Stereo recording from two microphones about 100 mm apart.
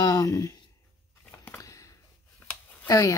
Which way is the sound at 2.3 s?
15° left (ahead or behind).